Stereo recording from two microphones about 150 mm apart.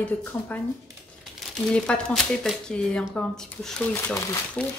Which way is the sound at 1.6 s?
5° left (ahead or behind).